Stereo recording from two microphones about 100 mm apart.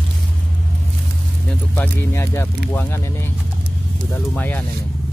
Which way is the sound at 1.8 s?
20° left (ahead or behind).